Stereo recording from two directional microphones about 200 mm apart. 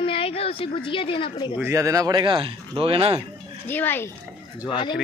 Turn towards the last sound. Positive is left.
turn(degrees=25)  # may be behind; listen again after turning